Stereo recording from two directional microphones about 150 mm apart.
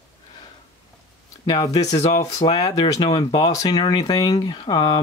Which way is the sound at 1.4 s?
30° left (ahead or behind).